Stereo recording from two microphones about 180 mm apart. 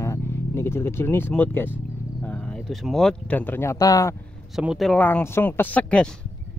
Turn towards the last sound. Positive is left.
turn(degrees=5)  # may be behind; listen again after turning